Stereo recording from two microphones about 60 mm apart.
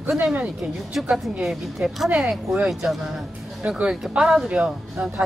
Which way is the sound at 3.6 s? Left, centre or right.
Right.